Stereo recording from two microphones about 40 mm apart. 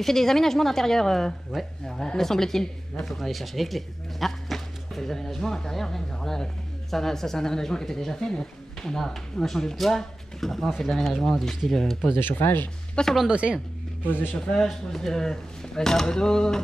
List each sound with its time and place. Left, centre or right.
0.0 s speech: centre
3.1 s speech: centre
12.2 s speech: left
13.0 s a woman's voice: left
13.3 s a woman's voice: right
14.0 s speech: left
14.3 s speech: centre